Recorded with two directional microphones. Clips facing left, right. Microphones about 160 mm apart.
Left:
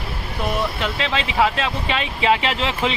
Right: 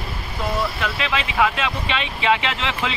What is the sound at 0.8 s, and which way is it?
Speech, 30° left (ahead or behind).